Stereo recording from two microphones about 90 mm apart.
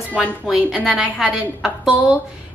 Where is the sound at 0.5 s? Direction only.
5° right (ahead or behind).